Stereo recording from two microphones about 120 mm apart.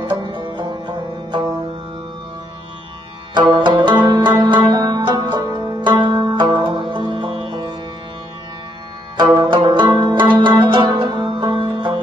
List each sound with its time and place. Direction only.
0.0 s music: 40° right (ahead or behind)
3.3 s music: 40° right (ahead or behind)
9.1 s music: 40° right (ahead or behind)